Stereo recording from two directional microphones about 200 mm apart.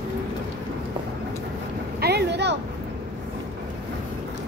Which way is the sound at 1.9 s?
55° right (ahead or behind).